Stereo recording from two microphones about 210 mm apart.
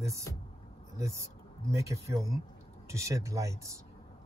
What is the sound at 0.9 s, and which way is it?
Speech, 15° right (ahead or behind).